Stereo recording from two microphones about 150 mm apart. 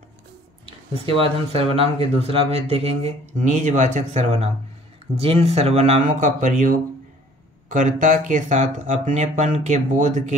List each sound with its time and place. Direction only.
0.7 s speech: 35° right (ahead or behind); by 6.5 s 55° right (ahead or behind)
7.7 s speech: 60° right (ahead or behind)